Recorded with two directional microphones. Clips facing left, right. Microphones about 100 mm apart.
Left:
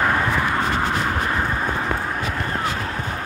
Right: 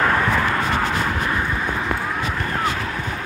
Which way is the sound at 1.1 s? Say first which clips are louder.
Even; 40° left (ahead or behind).